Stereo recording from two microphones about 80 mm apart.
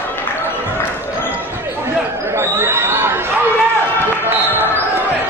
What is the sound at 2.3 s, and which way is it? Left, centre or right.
Chatter, right.